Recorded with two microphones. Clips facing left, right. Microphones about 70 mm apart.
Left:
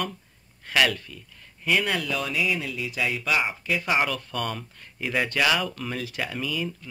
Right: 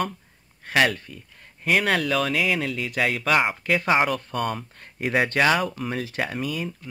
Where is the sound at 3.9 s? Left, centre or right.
Right.